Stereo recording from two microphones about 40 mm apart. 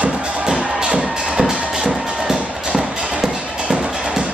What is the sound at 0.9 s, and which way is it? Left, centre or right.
Music, centre.